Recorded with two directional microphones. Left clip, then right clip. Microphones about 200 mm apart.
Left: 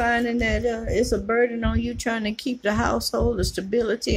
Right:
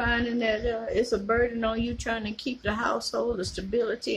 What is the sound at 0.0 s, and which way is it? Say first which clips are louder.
Speech: left 4 dB; 30° left (ahead or behind).